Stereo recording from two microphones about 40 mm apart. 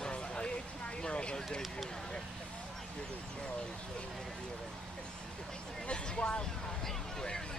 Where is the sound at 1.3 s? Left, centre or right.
Centre.